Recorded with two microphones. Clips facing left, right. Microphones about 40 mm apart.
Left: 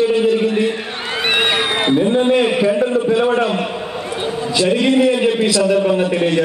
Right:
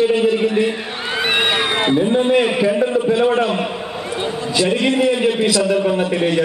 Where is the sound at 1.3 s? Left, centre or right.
Centre.